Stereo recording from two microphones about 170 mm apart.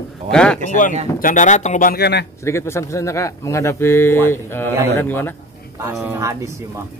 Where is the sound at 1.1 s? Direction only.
50° left (ahead or behind).